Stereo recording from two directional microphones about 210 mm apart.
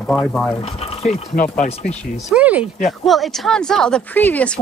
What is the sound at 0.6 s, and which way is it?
Speech, 30° left (ahead or behind).